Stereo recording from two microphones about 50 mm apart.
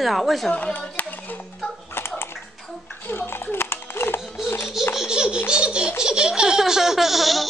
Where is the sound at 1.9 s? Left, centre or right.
Left.